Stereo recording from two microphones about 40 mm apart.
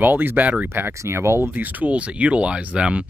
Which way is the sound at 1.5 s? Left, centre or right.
Right.